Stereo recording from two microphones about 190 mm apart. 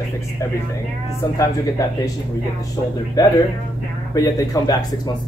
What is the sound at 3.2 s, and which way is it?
Speech, 20° left (ahead or behind).